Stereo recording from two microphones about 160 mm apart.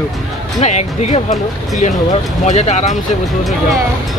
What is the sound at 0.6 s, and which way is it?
Speech, 45° left (ahead or behind).